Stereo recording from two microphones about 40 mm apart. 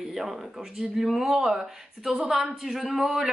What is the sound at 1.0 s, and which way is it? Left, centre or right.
A woman's voice, centre.